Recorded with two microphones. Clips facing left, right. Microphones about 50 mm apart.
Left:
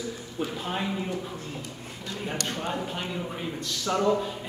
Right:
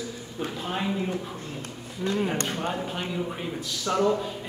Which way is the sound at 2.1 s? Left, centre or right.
Centre.